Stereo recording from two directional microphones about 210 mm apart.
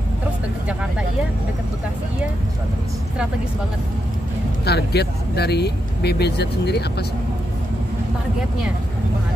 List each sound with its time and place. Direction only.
4.6 s speech: 50° left (ahead or behind)